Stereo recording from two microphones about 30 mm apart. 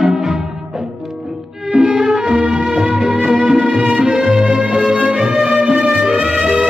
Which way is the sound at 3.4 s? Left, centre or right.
Right.